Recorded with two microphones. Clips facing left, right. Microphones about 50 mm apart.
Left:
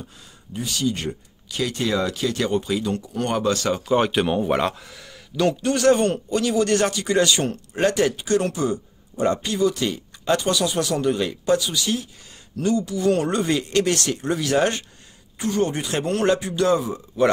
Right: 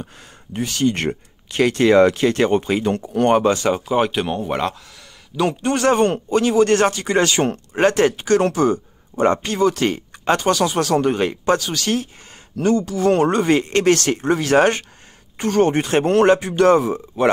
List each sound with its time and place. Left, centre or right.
0.0 s speech: right
3.9 s speech: centre
5.3 s a man's voice: centre
5.6 s speech: right